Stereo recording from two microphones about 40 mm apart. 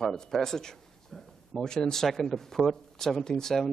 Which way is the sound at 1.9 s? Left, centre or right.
Centre.